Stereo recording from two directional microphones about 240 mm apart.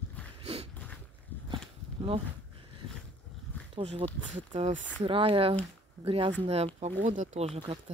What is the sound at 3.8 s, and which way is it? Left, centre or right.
Speech, right.